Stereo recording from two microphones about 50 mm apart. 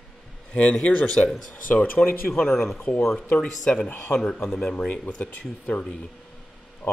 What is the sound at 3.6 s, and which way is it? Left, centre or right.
A man's voice, centre.